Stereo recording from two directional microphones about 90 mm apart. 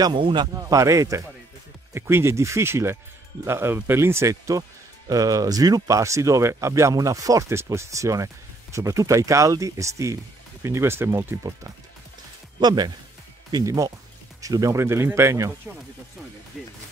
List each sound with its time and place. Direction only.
0.1 s speech: 65° right (ahead or behind)
0.7 s speech: 40° right (ahead or behind)
12.5 s speech: 50° right (ahead or behind)
13.7 s speech: 40° right (ahead or behind)
16.5 s speech: 5° right (ahead or behind)